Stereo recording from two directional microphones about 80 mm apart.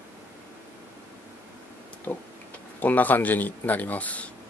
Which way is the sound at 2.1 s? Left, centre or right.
Centre.